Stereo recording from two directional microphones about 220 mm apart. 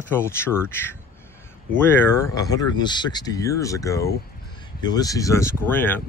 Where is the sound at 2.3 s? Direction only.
15° left (ahead or behind).